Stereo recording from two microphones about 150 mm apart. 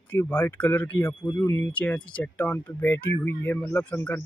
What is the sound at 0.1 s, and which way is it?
Speech, 15° left (ahead or behind).